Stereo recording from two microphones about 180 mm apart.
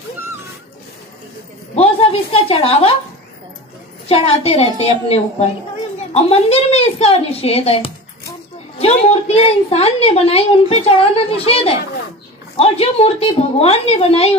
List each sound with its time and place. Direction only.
1.8 s a woman's voice: 30° left (ahead or behind)
4.1 s a woman's voice: 35° left (ahead or behind)